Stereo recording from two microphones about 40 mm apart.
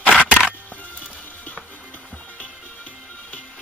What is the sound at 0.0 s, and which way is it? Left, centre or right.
Music, left.